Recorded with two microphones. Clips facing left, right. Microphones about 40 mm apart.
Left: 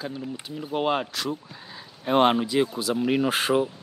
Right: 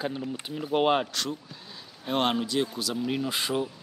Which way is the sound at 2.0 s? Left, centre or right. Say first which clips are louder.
Left 6 dB; left.